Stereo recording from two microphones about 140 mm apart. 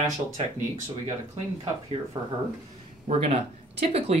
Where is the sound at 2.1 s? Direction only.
30° right (ahead or behind).